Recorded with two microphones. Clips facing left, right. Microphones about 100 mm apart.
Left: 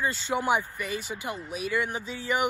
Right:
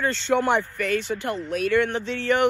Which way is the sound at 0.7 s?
60° right (ahead or behind).